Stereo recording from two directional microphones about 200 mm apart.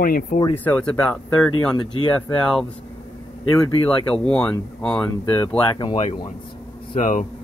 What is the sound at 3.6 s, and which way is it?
Speech, 20° left (ahead or behind).